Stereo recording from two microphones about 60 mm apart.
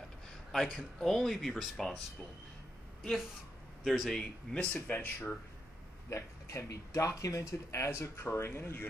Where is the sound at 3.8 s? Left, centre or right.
Centre.